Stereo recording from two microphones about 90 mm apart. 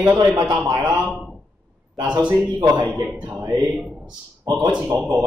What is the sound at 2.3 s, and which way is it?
Speech, 15° right (ahead or behind).